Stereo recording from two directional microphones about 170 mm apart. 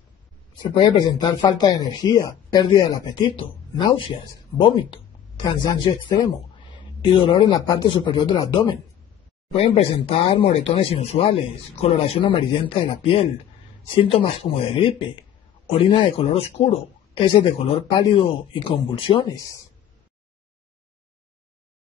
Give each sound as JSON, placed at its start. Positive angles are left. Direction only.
{"t": 0.6, "sound": "speech", "side_deg": 25}